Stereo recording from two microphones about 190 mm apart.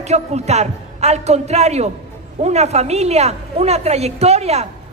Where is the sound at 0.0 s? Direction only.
35° right (ahead or behind).